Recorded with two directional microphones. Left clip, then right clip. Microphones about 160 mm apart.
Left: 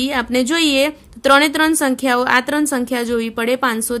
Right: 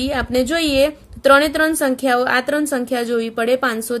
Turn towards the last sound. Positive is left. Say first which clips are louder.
# even
turn(degrees=30)  # may be behind; listen again after turning